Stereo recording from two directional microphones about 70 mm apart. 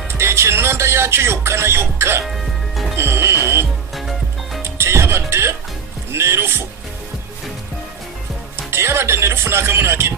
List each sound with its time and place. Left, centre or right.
0.1 s speech: right
2.2 s music: centre
3.0 s music: right
4.6 s music: right
6.1 s speech: right
8.6 s speech: right